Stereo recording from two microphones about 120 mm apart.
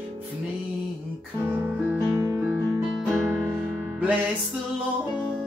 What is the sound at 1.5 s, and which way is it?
Music, 20° right (ahead or behind).